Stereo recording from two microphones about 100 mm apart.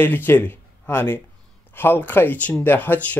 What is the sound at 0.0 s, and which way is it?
Speech, 20° left (ahead or behind).